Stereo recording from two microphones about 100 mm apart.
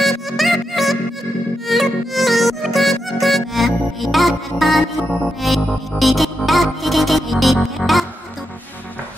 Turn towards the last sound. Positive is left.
turn(degrees=0)  # may be behind; listen again after turning